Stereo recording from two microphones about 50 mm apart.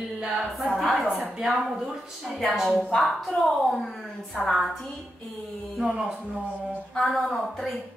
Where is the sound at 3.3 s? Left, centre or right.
Centre.